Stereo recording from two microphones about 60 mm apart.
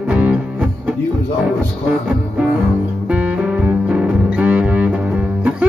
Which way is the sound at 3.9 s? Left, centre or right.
Centre.